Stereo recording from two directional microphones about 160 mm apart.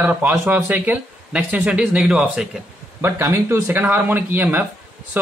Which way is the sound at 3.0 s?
15° right (ahead or behind).